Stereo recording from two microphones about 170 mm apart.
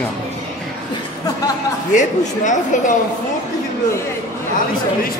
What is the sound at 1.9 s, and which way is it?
A woman's voice, 45° left (ahead or behind).